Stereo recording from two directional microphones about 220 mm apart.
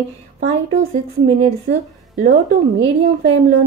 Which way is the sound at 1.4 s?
30° right (ahead or behind).